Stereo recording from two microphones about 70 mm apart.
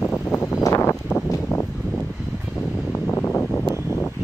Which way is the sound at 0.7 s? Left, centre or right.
Left.